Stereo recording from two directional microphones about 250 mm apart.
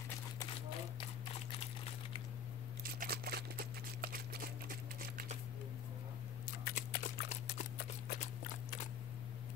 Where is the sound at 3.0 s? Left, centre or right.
Right.